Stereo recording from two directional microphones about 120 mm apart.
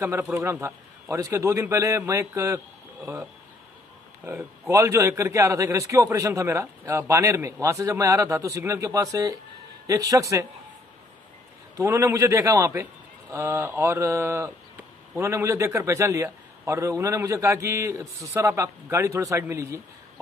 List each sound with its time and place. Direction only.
0.0 s a man's voice: 20° right (ahead or behind)
4.4 s a man's voice: 20° right (ahead or behind)
11.7 s a man's voice: 20° right (ahead or behind)